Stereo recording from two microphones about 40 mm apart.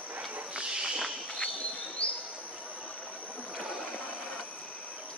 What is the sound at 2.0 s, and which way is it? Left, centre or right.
Bird, left.